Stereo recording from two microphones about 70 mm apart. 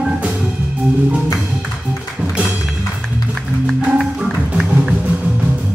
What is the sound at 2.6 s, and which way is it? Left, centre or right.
Music, centre.